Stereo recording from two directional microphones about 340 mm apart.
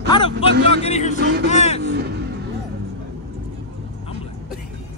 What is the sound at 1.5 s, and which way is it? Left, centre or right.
Vehicle, centre.